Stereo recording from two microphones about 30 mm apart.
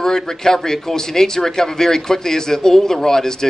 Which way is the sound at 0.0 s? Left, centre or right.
Centre.